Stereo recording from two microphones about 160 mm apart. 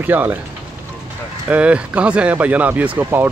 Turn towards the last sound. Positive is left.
turn(degrees=-10)  # may be behind; listen again after turning